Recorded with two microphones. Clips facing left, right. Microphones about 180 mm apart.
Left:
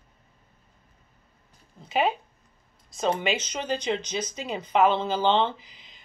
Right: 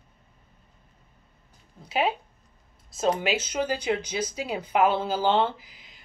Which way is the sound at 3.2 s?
5° right (ahead or behind).